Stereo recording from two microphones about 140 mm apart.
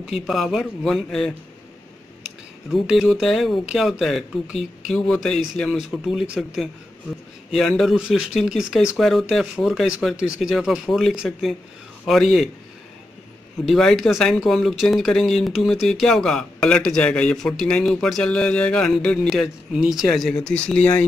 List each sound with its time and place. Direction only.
0.0 s speech: centre (ahead or behind)
2.7 s speech: centre (ahead or behind)
13.7 s speech: centre (ahead or behind)